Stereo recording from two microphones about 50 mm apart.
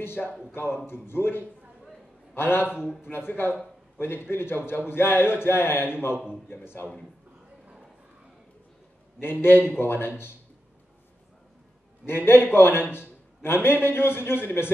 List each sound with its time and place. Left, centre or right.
0.5 s a man's voice: left
2.6 s a man's voice: centre
3.0 s a man's voice: left
9.2 s a man's voice: left
12.1 s a man's voice: left